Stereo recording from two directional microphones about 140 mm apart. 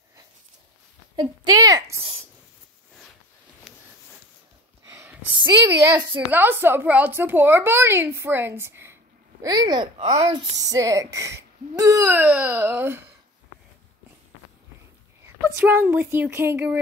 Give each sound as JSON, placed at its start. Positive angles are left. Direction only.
{"t": 1.1, "sound": "a woman's voice", "side_deg": -30}
{"t": 3.7, "sound": "a sound", "side_deg": -5}
{"t": 5.4, "sound": "speech", "side_deg": -25}
{"t": 6.3, "sound": "a woman's voice", "side_deg": -15}
{"t": 9.4, "sound": "speech", "side_deg": -30}
{"t": 9.9, "sound": "a woman's voice", "side_deg": -50}
{"t": 10.3, "sound": "speech", "side_deg": -25}
{"t": 15.2, "sound": "speech", "side_deg": -15}